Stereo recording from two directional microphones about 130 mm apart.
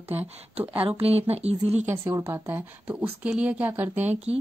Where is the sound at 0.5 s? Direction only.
45° right (ahead or behind).